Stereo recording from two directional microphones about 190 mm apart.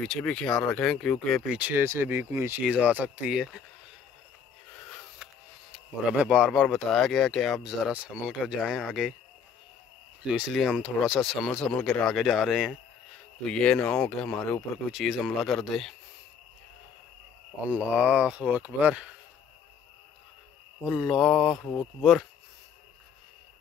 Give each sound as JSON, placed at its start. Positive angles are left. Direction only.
{"t": 0.0, "sound": "speech", "side_deg": 5}
{"t": 4.7, "sound": "a sound", "side_deg": 5}
{"t": 6.7, "sound": "speech", "side_deg": 0}
{"t": 10.3, "sound": "speech", "side_deg": -5}
{"t": 17.6, "sound": "speech", "side_deg": -5}
{"t": 20.8, "sound": "speech", "side_deg": -5}
{"t": 21.5, "sound": "speech", "side_deg": 15}